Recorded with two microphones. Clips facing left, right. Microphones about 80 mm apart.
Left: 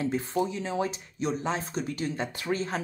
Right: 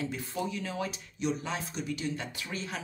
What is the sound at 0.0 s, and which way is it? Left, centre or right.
Speech, left.